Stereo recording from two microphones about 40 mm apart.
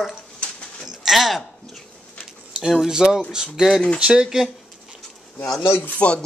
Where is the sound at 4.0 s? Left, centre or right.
Right.